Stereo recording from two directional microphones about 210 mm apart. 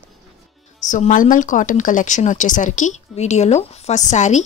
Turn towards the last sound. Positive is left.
turn(degrees=35)  # may be behind; listen again after turning